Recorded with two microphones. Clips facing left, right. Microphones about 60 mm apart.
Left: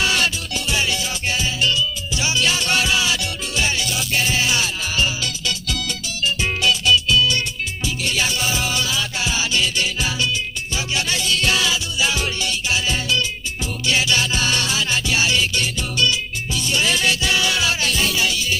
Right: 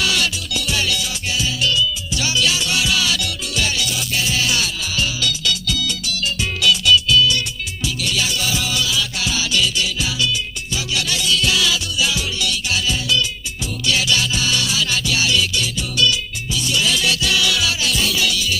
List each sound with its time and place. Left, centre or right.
0.0 s music: left
3.0 s music: left